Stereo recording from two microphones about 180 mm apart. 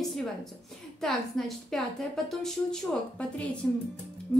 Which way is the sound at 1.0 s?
Centre (ahead or behind).